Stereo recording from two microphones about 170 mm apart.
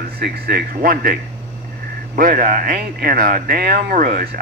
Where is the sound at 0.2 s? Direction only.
60° right (ahead or behind).